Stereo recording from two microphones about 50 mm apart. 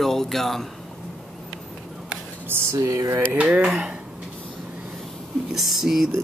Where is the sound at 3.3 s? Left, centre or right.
Right.